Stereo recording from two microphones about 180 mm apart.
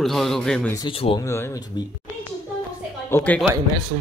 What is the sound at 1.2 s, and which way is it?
Speech, 15° left (ahead or behind).